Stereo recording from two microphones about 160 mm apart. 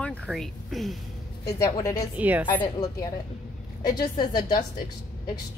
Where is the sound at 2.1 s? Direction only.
10° right (ahead or behind).